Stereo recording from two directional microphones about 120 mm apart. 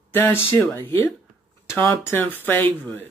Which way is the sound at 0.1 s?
20° left (ahead or behind).